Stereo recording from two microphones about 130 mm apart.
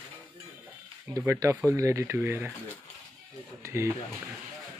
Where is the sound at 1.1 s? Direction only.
25° right (ahead or behind).